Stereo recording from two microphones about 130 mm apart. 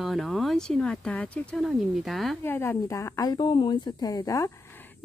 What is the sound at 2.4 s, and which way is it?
Speech, 20° left (ahead or behind).